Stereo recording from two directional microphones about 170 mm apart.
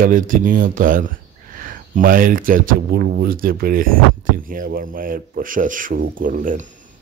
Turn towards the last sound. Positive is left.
turn(degrees=-50)  # may be behind; listen again after turning